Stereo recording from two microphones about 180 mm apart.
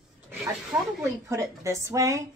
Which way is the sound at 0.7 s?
15° right (ahead or behind).